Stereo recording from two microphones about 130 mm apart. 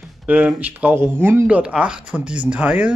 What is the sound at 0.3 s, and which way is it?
Speech, 15° right (ahead or behind).